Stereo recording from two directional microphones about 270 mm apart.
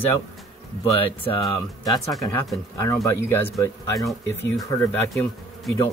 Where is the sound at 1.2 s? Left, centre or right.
Centre.